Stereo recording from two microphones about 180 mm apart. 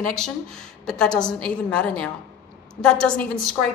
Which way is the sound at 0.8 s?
5° left (ahead or behind).